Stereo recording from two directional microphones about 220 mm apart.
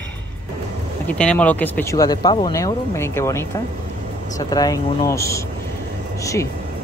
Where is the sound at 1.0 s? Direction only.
5° left (ahead or behind).